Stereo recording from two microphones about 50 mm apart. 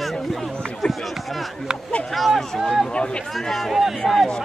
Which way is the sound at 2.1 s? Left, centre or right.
Centre.